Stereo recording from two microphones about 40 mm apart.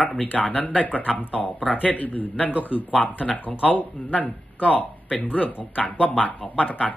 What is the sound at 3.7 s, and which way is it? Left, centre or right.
Speech, left.